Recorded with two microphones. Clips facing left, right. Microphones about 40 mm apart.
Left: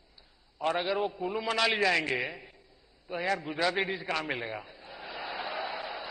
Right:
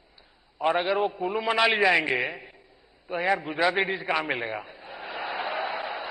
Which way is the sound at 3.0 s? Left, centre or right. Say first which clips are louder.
Right 5 dB; right.